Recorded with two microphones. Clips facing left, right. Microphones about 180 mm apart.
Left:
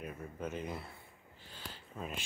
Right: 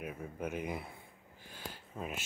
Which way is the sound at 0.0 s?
10° right (ahead or behind).